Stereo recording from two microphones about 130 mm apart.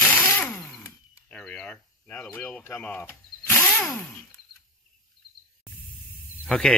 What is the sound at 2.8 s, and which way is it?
Speech, 15° left (ahead or behind).